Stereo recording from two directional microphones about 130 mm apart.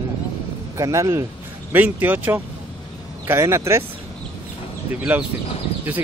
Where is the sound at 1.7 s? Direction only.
15° right (ahead or behind).